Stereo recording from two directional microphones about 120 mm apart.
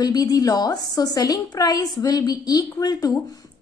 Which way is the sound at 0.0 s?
30° left (ahead or behind).